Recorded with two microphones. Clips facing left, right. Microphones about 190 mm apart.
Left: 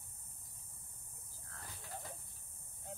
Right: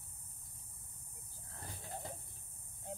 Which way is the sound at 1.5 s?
25° right (ahead or behind).